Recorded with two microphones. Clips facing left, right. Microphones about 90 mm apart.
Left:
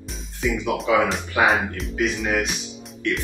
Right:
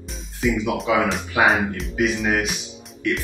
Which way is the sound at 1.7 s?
Centre (ahead or behind).